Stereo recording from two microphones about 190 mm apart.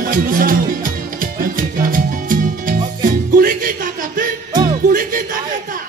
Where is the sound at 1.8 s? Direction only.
45° right (ahead or behind).